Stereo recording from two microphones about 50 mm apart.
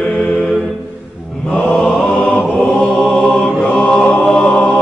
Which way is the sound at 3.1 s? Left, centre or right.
Centre.